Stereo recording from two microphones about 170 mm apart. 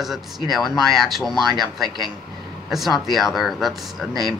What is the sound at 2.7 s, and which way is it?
Speech, centre (ahead or behind).